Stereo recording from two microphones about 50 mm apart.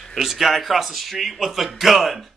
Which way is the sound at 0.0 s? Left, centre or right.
Centre.